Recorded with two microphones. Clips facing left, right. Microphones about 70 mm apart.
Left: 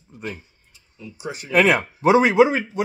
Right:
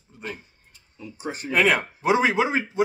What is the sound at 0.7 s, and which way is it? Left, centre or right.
Speech, right.